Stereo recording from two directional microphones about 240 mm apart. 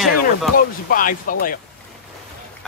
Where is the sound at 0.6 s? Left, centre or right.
Left.